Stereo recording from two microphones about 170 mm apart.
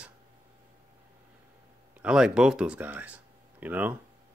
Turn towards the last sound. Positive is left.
turn(degrees=-10)  # may be behind; listen again after turning